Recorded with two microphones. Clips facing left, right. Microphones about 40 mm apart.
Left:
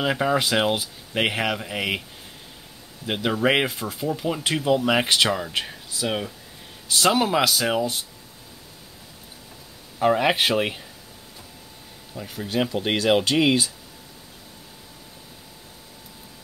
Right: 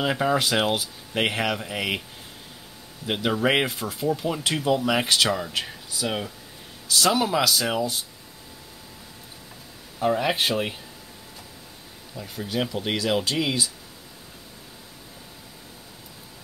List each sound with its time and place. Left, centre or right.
0.0 s speech: centre
3.1 s speech: centre
4.8 s speech: left
5.7 s speech: centre
7.1 s speech: centre
9.9 s speech: left
12.1 s speech: left
12.5 s speech: left